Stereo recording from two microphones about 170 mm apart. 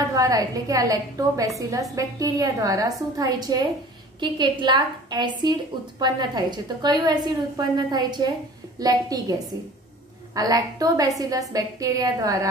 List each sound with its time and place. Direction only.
0.1 s a woman's voice: 20° right (ahead or behind)